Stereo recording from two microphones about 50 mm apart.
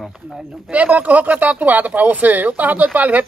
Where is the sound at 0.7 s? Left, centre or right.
Right.